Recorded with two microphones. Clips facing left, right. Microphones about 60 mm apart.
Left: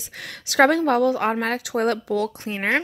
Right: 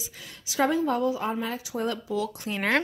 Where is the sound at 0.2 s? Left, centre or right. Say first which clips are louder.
Left 8 dB; left.